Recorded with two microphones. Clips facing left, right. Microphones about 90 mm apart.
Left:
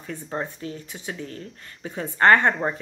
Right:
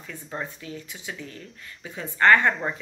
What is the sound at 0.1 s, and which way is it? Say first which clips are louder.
Speech: left 4 dB; 25° left (ahead or behind).